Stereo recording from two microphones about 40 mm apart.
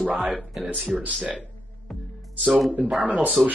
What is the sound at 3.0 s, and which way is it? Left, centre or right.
Speech, right.